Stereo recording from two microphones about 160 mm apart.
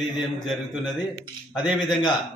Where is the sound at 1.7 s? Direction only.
30° left (ahead or behind).